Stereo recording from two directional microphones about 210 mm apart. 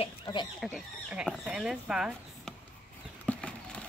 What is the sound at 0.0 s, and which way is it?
Speech, 20° left (ahead or behind).